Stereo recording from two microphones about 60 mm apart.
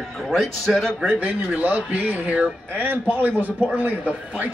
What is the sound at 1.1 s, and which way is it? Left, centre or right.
A man's voice, right.